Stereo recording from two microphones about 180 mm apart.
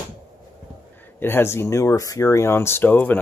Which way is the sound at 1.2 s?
15° left (ahead or behind).